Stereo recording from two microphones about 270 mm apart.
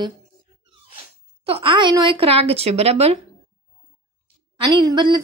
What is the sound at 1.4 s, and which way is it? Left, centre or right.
A woman's voice, centre.